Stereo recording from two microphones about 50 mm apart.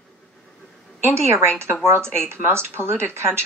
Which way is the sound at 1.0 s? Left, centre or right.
Right.